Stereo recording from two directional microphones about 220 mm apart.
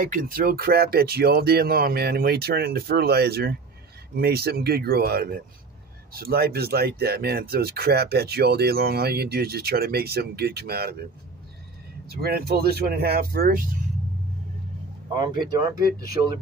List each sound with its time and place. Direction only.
0.0 s speech: 40° right (ahead or behind)
12.2 s speech: 45° right (ahead or behind)